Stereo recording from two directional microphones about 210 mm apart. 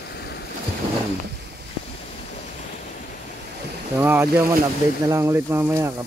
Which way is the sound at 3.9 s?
10° right (ahead or behind).